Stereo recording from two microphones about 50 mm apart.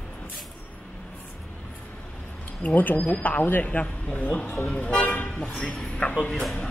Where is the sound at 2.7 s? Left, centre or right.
Left.